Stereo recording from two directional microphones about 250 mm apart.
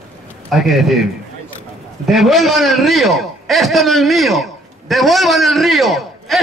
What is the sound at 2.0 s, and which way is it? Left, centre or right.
A man's voice, centre.